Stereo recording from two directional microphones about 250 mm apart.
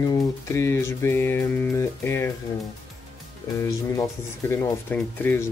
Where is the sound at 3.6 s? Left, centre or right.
Centre.